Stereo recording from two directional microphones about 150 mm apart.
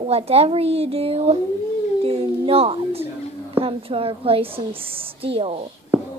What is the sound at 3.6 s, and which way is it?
A woman's voice, 40° right (ahead or behind).